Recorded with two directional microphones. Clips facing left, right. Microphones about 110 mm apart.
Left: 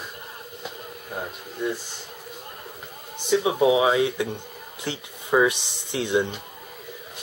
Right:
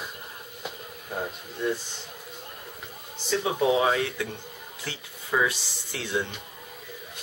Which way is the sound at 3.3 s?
15° left (ahead or behind).